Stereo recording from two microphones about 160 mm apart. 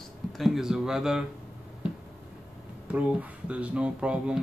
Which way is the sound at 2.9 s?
10° right (ahead or behind).